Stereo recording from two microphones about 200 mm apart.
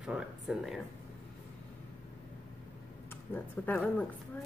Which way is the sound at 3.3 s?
10° left (ahead or behind).